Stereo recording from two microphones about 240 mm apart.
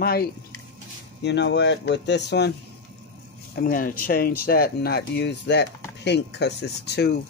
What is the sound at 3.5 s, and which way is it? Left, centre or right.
Speech, left.